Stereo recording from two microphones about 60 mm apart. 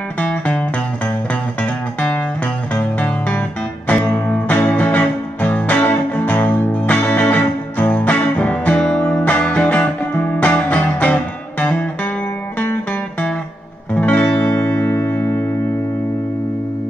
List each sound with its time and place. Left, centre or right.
0.2 s music: left
13.9 s music: left